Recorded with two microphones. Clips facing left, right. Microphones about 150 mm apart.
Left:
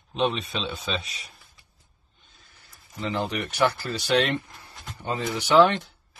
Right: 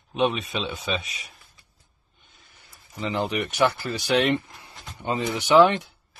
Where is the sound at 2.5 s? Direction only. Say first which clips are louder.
Right 1 dB; 15° right (ahead or behind).